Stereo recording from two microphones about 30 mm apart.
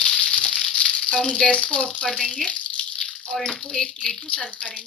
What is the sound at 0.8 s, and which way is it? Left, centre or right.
Speech, left.